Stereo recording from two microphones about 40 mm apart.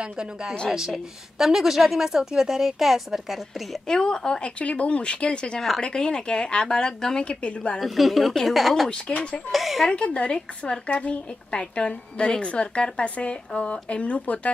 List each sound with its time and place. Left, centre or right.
0.0 s a woman's voice: centre
0.9 s a woman's voice: centre
3.8 s a woman's voice: centre
4.6 s a woman's voice: left
7.2 s a woman's voice: left
7.8 s a woman's voice: centre
9.0 s speech: left
9.5 s a woman's voice: centre
9.8 s a woman's voice: left